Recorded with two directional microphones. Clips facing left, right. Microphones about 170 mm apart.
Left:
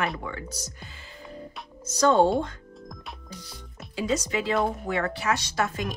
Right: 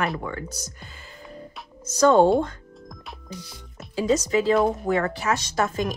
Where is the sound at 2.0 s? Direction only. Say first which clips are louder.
Right 4 dB; 50° right (ahead or behind).